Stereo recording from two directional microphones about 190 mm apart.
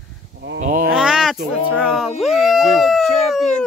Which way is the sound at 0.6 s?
45° right (ahead or behind).